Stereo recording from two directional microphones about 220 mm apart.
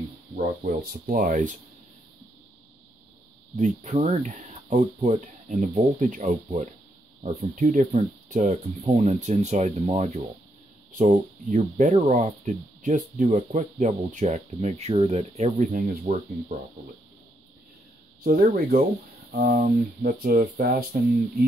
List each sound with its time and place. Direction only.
0.4 s speech: 35° right (ahead or behind)
3.5 s speech: 35° right (ahead or behind)
18.2 s speech: 40° right (ahead or behind)